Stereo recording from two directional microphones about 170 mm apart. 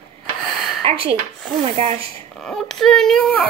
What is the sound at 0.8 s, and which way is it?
Speech, 35° right (ahead or behind).